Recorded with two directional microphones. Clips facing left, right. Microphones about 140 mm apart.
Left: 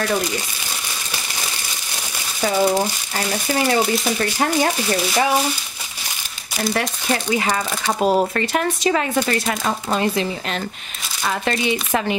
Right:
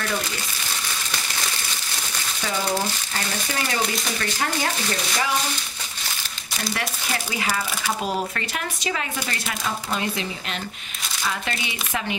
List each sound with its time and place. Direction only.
7.3 s speech: 40° left (ahead or behind)
11.2 s speech: 45° left (ahead or behind)